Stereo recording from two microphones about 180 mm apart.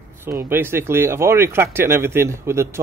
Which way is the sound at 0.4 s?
15° right (ahead or behind).